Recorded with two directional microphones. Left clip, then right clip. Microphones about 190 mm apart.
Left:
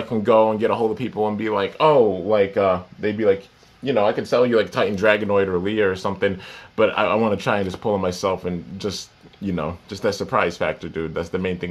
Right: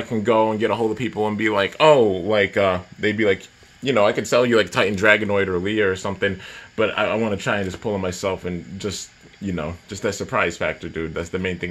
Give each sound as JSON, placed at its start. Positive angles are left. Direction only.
{"t": 0.1, "sound": "speech", "side_deg": -15}